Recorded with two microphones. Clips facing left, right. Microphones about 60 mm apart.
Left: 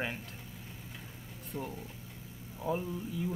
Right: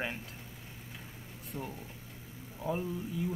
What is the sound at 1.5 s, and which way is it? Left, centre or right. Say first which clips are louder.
Speech: left 2 dB; centre.